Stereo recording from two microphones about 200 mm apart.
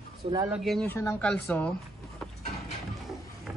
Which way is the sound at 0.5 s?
Centre (ahead or behind).